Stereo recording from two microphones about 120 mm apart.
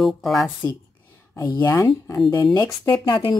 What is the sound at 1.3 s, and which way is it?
Speech, 30° left (ahead or behind).